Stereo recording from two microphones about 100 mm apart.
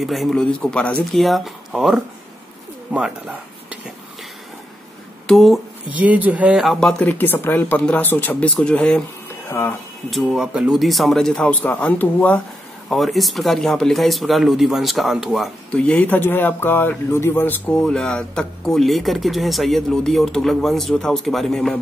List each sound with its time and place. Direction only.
0.0 s speech: centre (ahead or behind)
1.1 s speech: centre (ahead or behind)
2.9 s speech: 15° right (ahead or behind)
5.2 s speech: centre (ahead or behind)
5.9 s speech: 15° right (ahead or behind)
6.6 s speech: 5° left (ahead or behind)
9.5 s speech: 25° left (ahead or behind)
10.1 s speech: 5° right (ahead or behind); by 12.4 s 15° left (ahead or behind)
12.9 s speech: centre (ahead or behind)
15.7 s speech: 10° left (ahead or behind)
17.7 s speech: 5° left (ahead or behind)